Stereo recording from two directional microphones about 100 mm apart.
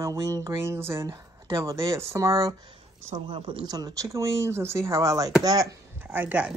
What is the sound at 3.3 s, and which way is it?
Speech, 60° right (ahead or behind).